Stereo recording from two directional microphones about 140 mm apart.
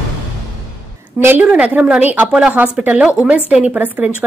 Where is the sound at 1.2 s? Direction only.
10° right (ahead or behind).